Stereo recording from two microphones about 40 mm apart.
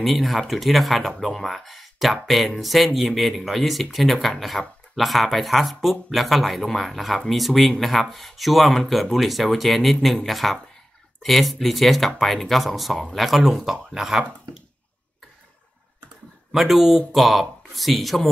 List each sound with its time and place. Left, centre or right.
0.0 s speech: centre
16.5 s speech: centre